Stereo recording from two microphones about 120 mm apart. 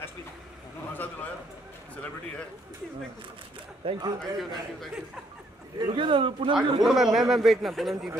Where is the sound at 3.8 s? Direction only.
40° right (ahead or behind).